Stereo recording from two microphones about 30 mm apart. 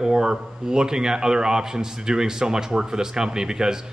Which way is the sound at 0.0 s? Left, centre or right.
Right.